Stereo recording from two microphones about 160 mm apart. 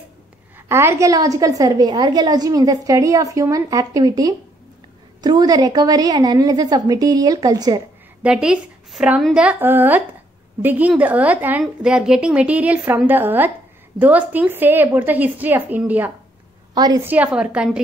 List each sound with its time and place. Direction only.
0.7 s a woman's voice: 15° right (ahead or behind)
8.2 s a woman's voice: 5° right (ahead or behind)
16.7 s a woman's voice: 25° right (ahead or behind)
17.0 s a woman's voice: 10° right (ahead or behind)